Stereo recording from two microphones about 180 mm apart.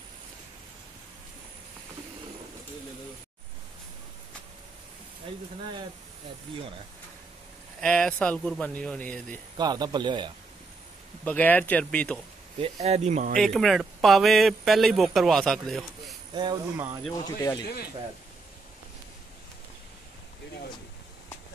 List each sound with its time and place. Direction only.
7.8 s speech: 5° left (ahead or behind)
9.6 s a man's voice: 25° right (ahead or behind)
11.2 s speech: 10° left (ahead or behind)
12.5 s speech: 35° right (ahead or behind)
13.4 s speech: centre (ahead or behind)
16.3 s a man's voice: 25° right (ahead or behind)
17.1 s speech: 20° left (ahead or behind)